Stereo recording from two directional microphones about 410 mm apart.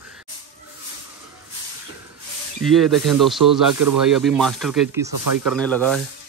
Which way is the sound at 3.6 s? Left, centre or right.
Right.